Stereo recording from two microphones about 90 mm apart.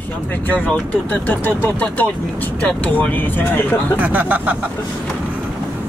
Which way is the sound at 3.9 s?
20° right (ahead or behind).